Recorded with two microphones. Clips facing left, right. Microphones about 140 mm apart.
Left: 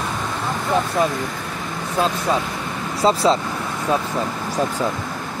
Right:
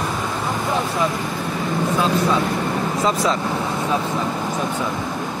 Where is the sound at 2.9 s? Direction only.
30° left (ahead or behind).